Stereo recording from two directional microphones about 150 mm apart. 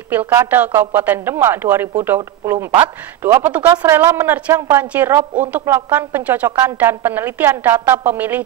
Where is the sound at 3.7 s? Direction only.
25° right (ahead or behind).